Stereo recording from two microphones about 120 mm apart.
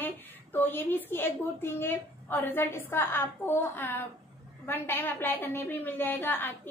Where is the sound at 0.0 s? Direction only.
15° left (ahead or behind).